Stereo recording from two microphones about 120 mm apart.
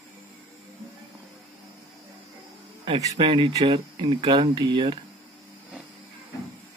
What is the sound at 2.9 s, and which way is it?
Speech, 55° right (ahead or behind).